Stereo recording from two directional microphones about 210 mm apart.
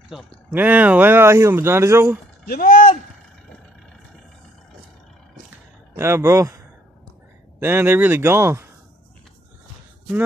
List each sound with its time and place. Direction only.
0.1 s speech: 5° right (ahead or behind)
2.4 s speech: 45° left (ahead or behind)
5.9 s speech: 10° right (ahead or behind)
7.6 s speech: 10° right (ahead or behind)